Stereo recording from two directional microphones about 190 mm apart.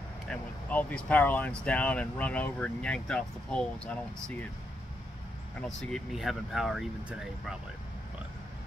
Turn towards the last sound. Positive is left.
turn(degrees=0)  # may be behind; listen again after turning